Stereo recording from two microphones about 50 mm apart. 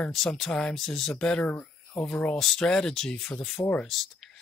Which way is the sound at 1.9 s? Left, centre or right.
Left.